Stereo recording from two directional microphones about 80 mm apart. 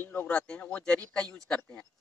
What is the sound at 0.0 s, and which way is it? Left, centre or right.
Speech, left.